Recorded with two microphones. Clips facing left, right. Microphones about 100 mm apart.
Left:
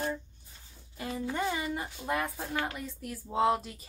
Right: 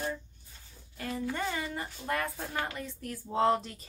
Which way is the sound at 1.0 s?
15° left (ahead or behind).